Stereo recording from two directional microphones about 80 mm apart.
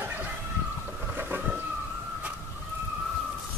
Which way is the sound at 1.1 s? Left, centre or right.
Right.